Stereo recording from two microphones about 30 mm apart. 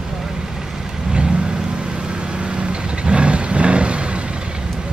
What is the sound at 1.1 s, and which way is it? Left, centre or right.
Vehicle, right.